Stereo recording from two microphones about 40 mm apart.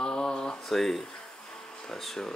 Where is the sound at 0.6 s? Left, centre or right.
Centre.